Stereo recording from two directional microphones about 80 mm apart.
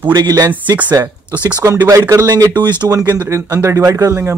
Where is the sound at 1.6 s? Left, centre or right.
Right.